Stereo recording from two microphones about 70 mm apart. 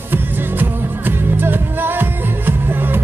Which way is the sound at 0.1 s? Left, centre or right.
Right.